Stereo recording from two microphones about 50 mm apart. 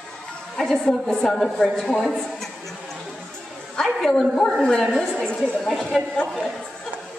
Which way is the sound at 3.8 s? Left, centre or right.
Centre.